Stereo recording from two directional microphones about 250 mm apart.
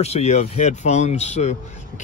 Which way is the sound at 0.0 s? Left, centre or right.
Left.